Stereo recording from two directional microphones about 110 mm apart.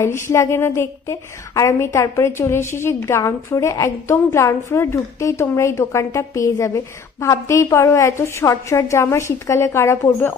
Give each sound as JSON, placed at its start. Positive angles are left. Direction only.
{"t": 0.0, "sound": "a woman's voice", "side_deg": 25}